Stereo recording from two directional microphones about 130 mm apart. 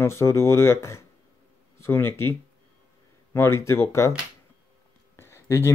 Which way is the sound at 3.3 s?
20° left (ahead or behind).